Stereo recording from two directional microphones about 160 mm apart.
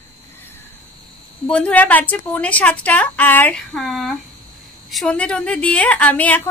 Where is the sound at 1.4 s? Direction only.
10° left (ahead or behind).